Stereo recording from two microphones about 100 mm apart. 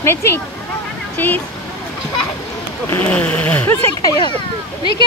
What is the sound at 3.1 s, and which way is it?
Speech, 15° left (ahead or behind).